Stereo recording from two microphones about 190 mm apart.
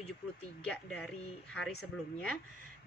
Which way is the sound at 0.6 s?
5° left (ahead or behind).